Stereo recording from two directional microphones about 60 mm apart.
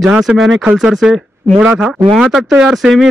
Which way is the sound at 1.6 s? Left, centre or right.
Right.